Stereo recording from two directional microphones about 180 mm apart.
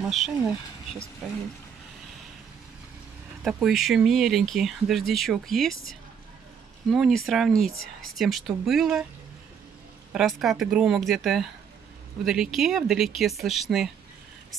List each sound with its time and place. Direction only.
0.0 s speech: centre (ahead or behind)
3.4 s speech: centre (ahead or behind)
6.9 s speech: centre (ahead or behind)
10.1 s speech: centre (ahead or behind)